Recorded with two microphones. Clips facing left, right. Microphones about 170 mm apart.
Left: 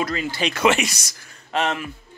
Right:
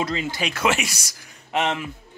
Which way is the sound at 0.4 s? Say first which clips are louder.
Left 5 dB; 5° right (ahead or behind).